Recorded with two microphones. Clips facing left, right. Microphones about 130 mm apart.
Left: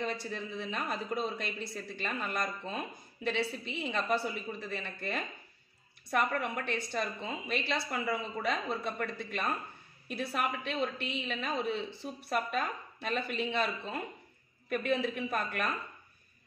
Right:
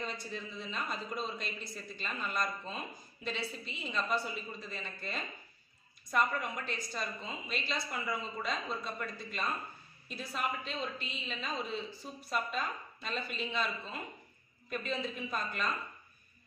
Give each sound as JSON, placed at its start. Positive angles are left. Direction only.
{"t": 0.0, "sound": "a woman's voice", "side_deg": 60}